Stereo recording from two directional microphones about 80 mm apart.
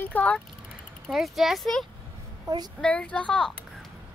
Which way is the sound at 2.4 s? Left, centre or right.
Right.